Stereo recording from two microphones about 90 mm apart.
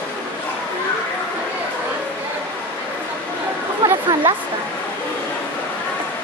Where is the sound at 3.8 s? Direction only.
55° right (ahead or behind).